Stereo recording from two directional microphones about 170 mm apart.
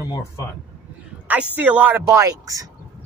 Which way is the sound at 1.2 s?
10° right (ahead or behind).